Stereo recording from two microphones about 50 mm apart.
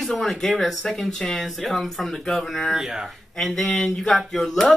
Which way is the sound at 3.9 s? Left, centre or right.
Centre.